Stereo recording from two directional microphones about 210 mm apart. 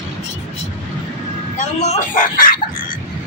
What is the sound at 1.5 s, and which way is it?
Speech, 35° left (ahead or behind).